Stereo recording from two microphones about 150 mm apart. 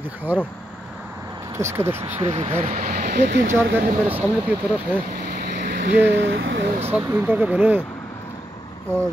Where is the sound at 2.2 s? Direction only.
45° right (ahead or behind).